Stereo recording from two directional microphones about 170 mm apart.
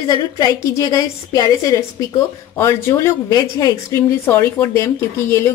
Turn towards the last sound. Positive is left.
turn(degrees=15)  # may be behind; listen again after turning